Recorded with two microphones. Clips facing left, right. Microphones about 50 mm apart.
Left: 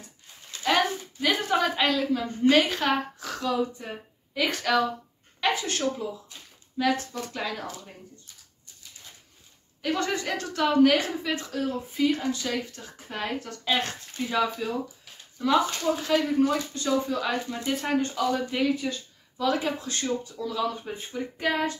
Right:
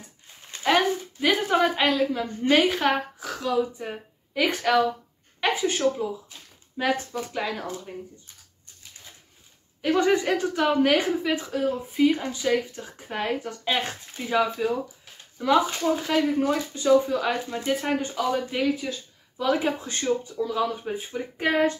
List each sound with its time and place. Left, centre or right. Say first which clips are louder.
0.7 s a woman's voice: right 3 dB; centre
7.2 s a woman's voice: right 3 dB; centre
9.8 s a woman's voice: right 6 dB; centre
19.3 s speech: right 2 dB; right
21.4 s speech: right 5 dB; right